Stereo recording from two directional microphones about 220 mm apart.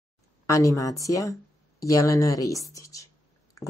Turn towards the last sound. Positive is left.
turn(degrees=15)  # may be behind; listen again after turning